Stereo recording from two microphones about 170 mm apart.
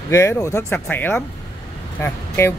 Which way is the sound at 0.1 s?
15° left (ahead or behind).